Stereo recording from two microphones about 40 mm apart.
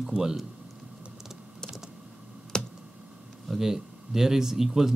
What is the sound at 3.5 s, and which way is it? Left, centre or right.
Speech, centre.